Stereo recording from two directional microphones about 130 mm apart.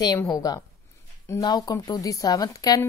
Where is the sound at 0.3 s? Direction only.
30° left (ahead or behind).